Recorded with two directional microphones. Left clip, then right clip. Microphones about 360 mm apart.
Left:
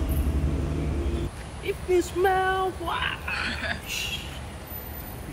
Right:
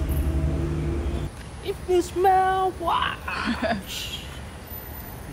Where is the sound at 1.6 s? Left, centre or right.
Centre.